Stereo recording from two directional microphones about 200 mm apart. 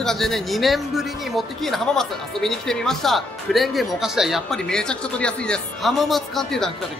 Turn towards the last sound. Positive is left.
turn(degrees=0)  # may be behind; listen again after turning